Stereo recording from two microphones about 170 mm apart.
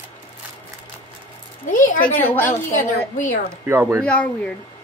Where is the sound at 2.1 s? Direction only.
10° left (ahead or behind).